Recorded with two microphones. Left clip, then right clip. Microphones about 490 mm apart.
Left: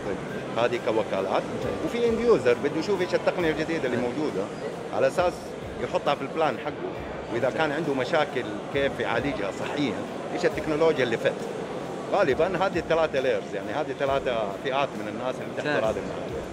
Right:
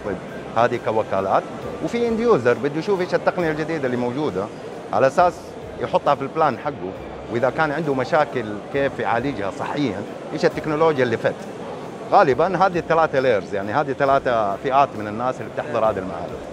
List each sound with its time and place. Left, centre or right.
0.6 s speech: right